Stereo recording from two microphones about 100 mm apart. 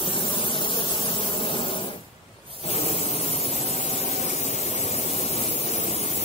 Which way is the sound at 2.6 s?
85° left.